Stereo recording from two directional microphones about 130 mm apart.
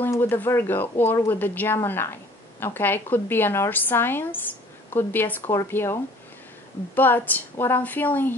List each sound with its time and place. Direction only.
0.0 s speech: 15° left (ahead or behind)
7.0 s speech: 15° left (ahead or behind)